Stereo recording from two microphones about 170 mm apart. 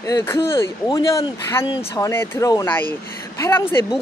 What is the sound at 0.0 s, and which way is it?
A woman's voice, 15° left (ahead or behind).